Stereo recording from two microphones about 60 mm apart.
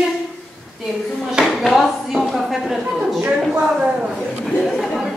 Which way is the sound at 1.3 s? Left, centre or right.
Centre.